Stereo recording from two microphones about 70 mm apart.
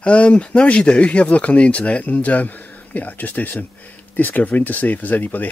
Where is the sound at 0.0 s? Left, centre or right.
Centre.